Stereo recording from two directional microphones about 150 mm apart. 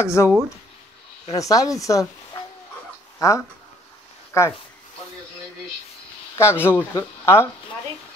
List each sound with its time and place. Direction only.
0.0 s speech: 20° left (ahead or behind)
1.3 s speech: 25° left (ahead or behind)
3.2 s speech: 20° left (ahead or behind)
6.3 s speech: 15° left (ahead or behind)